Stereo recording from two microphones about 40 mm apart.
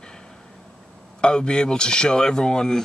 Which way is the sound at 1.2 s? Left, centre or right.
Left.